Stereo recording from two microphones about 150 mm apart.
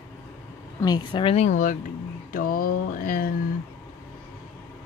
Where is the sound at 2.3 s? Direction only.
70° left (ahead or behind).